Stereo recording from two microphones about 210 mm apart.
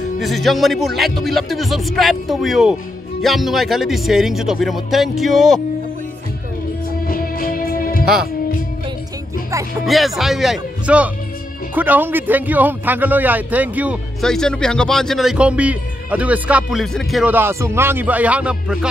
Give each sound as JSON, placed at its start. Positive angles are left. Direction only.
{"t": 0.2, "sound": "speech", "side_deg": 0}
{"t": 7.1, "sound": "music", "side_deg": 45}
{"t": 9.8, "sound": "a man's voice", "side_deg": 0}